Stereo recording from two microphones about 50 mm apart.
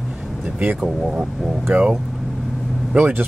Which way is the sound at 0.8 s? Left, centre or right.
Centre.